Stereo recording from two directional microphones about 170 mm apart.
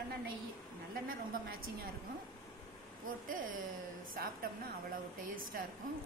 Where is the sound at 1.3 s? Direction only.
60° right (ahead or behind).